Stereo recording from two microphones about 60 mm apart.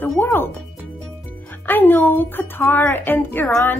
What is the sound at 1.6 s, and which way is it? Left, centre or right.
A child's voice, left.